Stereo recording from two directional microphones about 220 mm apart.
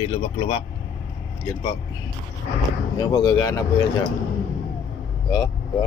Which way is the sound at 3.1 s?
15° left (ahead or behind).